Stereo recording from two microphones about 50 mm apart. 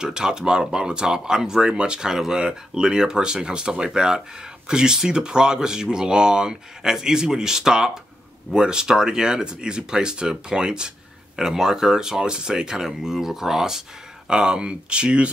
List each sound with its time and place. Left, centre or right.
0.0 s speech: centre